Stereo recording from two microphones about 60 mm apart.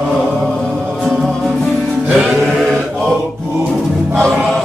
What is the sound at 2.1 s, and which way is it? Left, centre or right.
Music, centre.